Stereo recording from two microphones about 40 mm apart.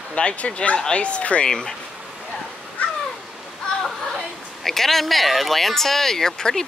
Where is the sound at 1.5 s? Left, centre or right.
Centre.